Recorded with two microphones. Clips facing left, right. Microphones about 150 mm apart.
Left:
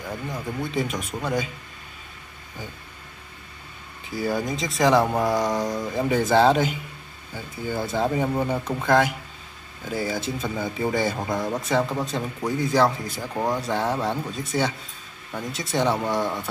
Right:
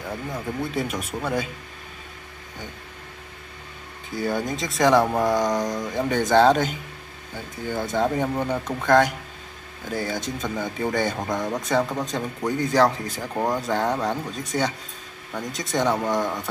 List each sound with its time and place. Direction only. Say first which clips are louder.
0.0 s speech: right 1 dB; centre (ahead or behind)
4.1 s speech: even; 5° left (ahead or behind)
13.2 s speech: right 1 dB; 5° right (ahead or behind)